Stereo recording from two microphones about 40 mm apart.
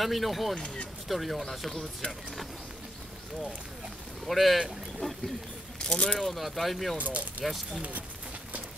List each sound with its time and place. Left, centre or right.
0.0 s speech: centre
4.3 s speech: centre
5.8 s speech: centre
6.1 s speech: centre
7.0 s speech: right